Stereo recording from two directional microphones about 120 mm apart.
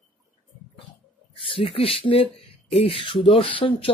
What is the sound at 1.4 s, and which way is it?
A man's voice, 50° left (ahead or behind).